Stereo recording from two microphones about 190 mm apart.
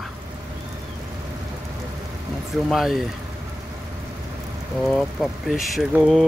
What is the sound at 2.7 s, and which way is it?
Speech, centre (ahead or behind).